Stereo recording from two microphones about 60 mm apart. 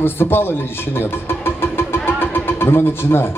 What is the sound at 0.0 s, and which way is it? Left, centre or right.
Speech, left.